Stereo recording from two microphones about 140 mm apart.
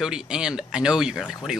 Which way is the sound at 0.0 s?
5° right (ahead or behind).